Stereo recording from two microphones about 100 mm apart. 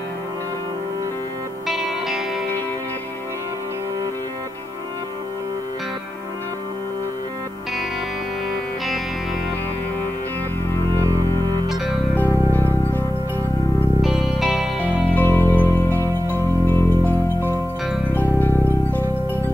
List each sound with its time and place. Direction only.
1.7 s music: centre (ahead or behind)
11.0 s music: 40° right (ahead or behind)
12.5 s music: 20° left (ahead or behind)
14.0 s music: 5° right (ahead or behind)
14.8 s music: 20° left (ahead or behind)